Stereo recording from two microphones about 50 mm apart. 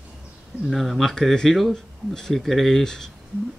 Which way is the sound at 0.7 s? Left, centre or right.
Centre.